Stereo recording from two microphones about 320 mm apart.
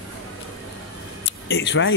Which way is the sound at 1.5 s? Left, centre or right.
Left.